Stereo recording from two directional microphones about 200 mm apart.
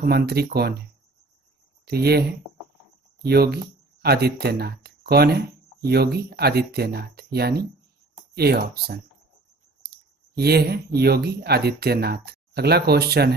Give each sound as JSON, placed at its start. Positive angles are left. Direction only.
{"t": 0.0, "sound": "speech", "side_deg": -50}
{"t": 1.9, "sound": "speech", "side_deg": -55}
{"t": 9.8, "sound": "clicking", "side_deg": -55}
{"t": 11.0, "sound": "speech", "side_deg": -50}